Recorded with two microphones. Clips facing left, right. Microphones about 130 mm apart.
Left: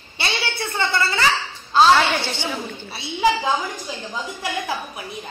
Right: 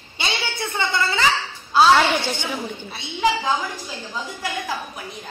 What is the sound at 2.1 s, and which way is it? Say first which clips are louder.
Speech: right 1 dB; 15° right (ahead or behind).